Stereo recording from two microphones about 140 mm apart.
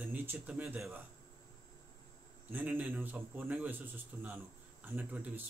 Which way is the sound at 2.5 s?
10° right (ahead or behind).